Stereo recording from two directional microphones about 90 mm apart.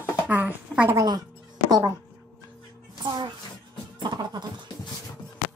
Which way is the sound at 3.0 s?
50° right (ahead or behind).